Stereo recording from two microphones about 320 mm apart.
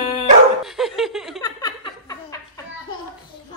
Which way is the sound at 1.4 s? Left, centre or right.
Centre.